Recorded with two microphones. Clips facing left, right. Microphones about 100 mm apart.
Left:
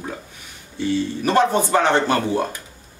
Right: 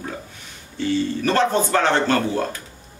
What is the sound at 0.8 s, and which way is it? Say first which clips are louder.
Speech: even; 15° left (ahead or behind).